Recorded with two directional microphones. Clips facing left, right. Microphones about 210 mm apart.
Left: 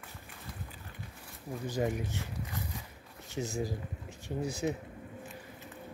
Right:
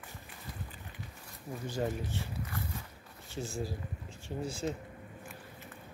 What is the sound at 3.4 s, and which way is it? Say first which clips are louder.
Speech: left 3 dB; 10° left (ahead or behind).